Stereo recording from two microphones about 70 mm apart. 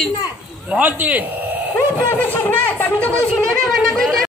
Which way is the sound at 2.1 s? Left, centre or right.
Left.